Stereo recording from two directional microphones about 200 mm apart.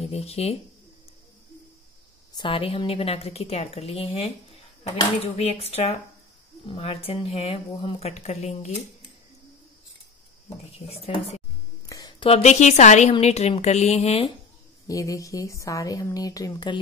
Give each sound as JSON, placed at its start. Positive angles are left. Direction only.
{"t": 0.0, "sound": "speech", "side_deg": 30}
{"t": 2.3, "sound": "speech", "side_deg": 25}
{"t": 10.9, "sound": "speech", "side_deg": 30}
{"t": 11.9, "sound": "a sound", "side_deg": 20}
{"t": 12.3, "sound": "speech", "side_deg": 35}
{"t": 14.9, "sound": "a woman's voice", "side_deg": 15}